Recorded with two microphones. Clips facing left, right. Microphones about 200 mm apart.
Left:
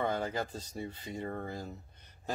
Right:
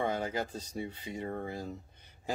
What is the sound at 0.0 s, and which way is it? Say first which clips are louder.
Speech: even; 10° right (ahead or behind).